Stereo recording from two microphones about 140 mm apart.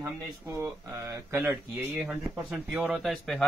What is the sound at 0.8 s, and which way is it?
A man's voice, 20° right (ahead or behind).